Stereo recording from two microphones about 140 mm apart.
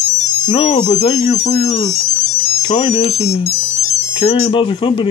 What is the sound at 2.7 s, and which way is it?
Speech, 35° left (ahead or behind).